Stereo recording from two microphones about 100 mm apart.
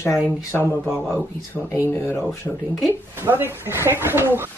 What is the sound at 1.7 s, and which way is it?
Speech, 25° left (ahead or behind).